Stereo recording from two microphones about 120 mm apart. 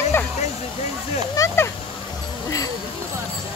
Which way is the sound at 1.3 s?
25° left (ahead or behind).